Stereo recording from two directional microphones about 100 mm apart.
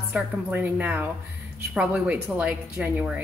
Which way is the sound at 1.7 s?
5° right (ahead or behind).